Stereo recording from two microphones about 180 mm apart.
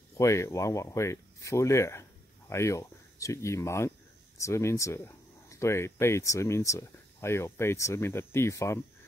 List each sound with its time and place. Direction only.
0.2 s speech: 15° left (ahead or behind)